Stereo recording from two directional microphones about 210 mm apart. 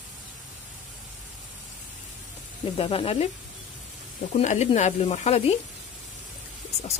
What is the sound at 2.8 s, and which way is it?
Speech, 25° left (ahead or behind).